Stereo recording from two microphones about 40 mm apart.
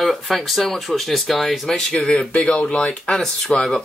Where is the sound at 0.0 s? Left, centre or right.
Centre.